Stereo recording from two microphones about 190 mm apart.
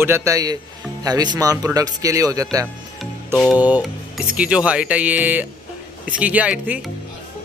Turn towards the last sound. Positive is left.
turn(degrees=-5)  # may be behind; listen again after turning